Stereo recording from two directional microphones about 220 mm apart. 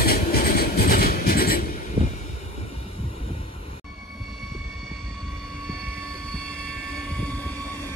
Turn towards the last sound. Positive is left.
turn(degrees=5)  # may be behind; listen again after turning